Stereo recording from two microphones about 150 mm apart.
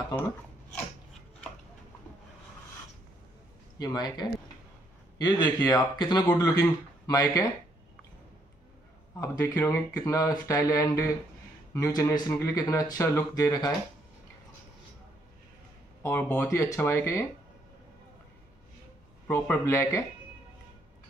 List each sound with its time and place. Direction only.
3.8 s speech: 25° left (ahead or behind)
9.2 s speech: 20° left (ahead or behind)
16.0 s speech: 10° left (ahead or behind)
19.2 s speech: 10° left (ahead or behind)